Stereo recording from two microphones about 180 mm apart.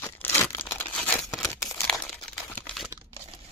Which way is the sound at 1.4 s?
20° left (ahead or behind).